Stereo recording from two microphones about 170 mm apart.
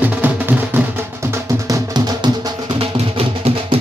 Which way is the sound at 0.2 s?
10° right (ahead or behind).